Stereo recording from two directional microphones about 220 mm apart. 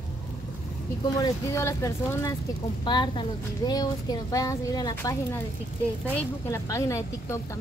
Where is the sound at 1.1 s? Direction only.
15° left (ahead or behind).